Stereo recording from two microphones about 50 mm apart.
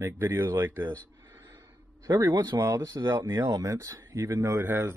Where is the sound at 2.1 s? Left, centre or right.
Right.